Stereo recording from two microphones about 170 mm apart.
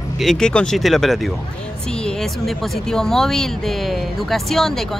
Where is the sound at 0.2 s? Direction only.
Centre (ahead or behind).